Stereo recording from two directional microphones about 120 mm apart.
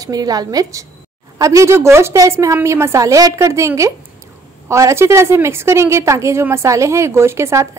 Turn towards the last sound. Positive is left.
turn(degrees=-20)  # may be behind; listen again after turning